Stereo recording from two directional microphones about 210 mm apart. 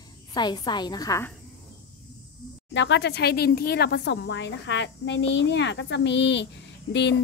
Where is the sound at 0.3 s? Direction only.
20° left (ahead or behind).